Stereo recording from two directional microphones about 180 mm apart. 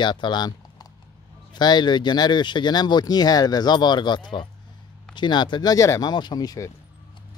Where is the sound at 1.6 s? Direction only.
25° left (ahead or behind).